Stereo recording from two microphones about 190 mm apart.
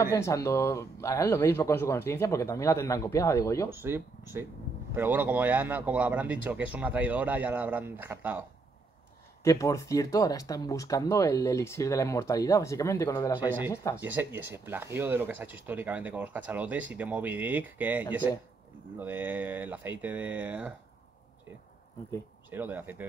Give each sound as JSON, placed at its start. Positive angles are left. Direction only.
{"t": 0.0, "sound": "speech", "side_deg": 15}
{"t": 3.7, "sound": "speech", "side_deg": -10}
{"t": 9.4, "sound": "speech", "side_deg": 15}
{"t": 14.0, "sound": "speech", "side_deg": -10}
{"t": 22.5, "sound": "speech", "side_deg": -10}